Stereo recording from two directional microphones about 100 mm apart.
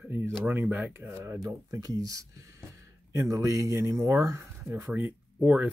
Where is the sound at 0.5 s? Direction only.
20° right (ahead or behind).